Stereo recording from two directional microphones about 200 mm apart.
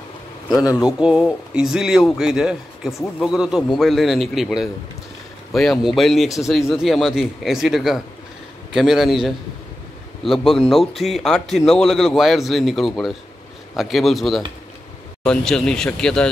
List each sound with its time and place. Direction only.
0.6 s speech: 15° left (ahead or behind)
0.8 s a man's voice: 5° right (ahead or behind)